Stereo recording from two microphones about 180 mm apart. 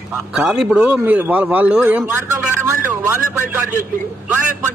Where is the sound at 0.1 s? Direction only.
Centre (ahead or behind).